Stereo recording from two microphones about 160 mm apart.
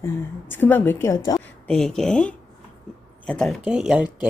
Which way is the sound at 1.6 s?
5° left (ahead or behind).